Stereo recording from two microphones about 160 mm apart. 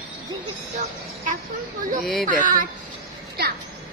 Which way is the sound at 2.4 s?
55° right (ahead or behind).